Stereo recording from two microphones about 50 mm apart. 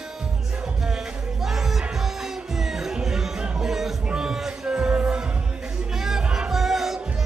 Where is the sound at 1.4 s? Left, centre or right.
Centre.